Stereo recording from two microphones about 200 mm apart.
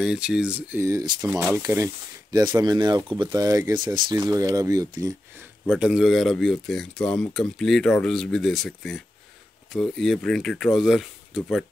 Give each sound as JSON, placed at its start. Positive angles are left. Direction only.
{"t": 0.0, "sound": "speech", "side_deg": -5}
{"t": 1.2, "sound": "speech", "side_deg": -5}
{"t": 5.7, "sound": "speech", "side_deg": 0}